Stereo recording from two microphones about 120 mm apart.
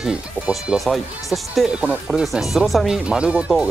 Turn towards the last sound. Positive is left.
turn(degrees=-10)  # may be behind; listen again after turning